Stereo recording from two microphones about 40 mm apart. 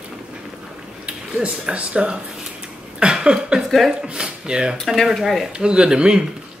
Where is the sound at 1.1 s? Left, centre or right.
Right.